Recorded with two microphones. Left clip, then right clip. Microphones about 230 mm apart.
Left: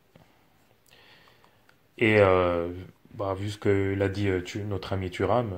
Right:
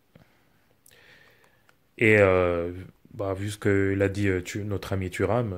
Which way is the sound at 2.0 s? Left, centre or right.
Right.